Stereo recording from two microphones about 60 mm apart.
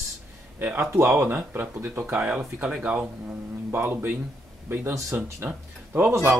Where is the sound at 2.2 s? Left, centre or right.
Right.